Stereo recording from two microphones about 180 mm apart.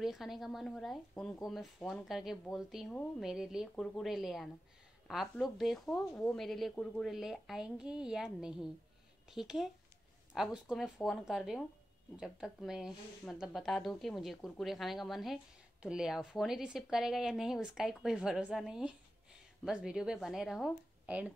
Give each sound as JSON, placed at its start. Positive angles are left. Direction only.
{"t": 0.0, "sound": "speech", "side_deg": 0}